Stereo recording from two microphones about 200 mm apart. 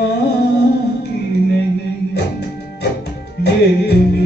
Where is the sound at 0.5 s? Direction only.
55° left (ahead or behind).